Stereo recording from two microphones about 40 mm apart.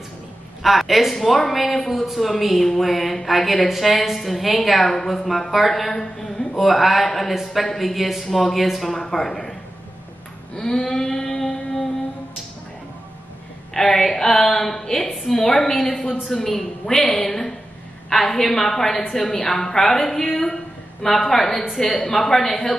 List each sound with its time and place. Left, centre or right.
0.6 s a woman's voice: centre
10.5 s a sound: centre
13.7 s a woman's voice: centre